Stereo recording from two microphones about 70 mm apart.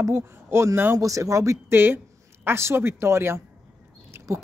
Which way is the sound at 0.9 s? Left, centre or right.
Right.